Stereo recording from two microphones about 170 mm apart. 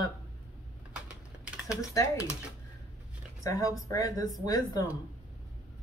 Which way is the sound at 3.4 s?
20° left (ahead or behind).